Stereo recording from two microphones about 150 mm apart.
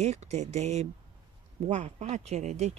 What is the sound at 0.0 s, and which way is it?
Speech, 50° right (ahead or behind).